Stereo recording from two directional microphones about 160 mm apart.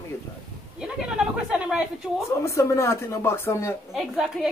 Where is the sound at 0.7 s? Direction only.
5° right (ahead or behind).